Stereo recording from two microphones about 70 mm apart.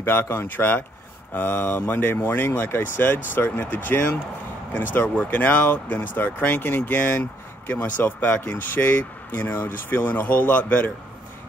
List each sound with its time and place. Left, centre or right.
0.0 s speech: left
5.0 s speech: centre